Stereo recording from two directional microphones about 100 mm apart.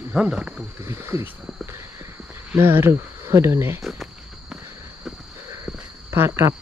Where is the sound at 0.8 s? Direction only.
25° right (ahead or behind).